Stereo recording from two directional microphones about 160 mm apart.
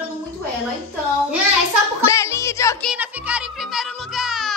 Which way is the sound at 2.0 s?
20° left (ahead or behind).